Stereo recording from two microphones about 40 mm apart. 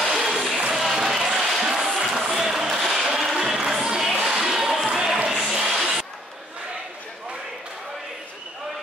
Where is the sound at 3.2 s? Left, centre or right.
Centre.